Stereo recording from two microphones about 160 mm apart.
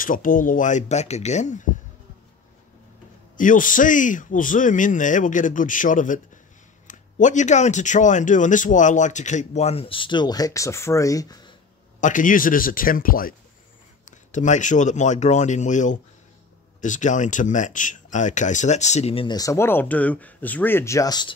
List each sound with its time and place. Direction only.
0.0 s speech: 60° left (ahead or behind)
3.3 s a man's voice: 55° left (ahead or behind); by 11.5 s 25° left (ahead or behind)
12.0 s a man's voice: 55° left (ahead or behind)
14.1 s speech: 50° left (ahead or behind)
19.3 s speech: 20° left (ahead or behind)